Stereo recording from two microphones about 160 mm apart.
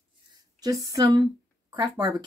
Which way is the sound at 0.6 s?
20° right (ahead or behind).